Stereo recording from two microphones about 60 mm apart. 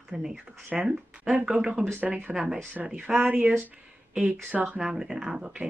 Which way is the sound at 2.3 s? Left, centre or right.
Centre.